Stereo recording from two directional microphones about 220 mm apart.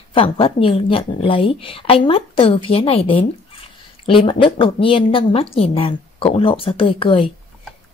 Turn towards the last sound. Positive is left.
turn(degrees=25)  # may be behind; listen again after turning